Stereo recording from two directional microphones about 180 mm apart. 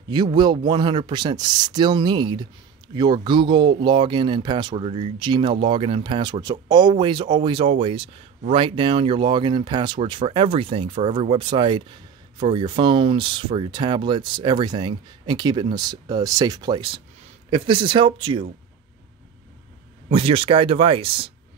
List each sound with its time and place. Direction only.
0.1 s speech: 25° right (ahead or behind)
20.1 s speech: 30° right (ahead or behind)